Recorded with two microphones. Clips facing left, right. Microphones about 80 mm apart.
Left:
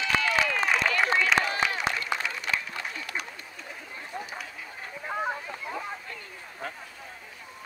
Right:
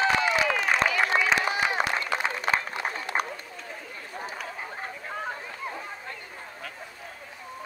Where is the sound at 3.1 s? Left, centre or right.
Right.